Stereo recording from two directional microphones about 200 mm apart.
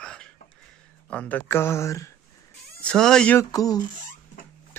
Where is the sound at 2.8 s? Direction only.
5° left (ahead or behind).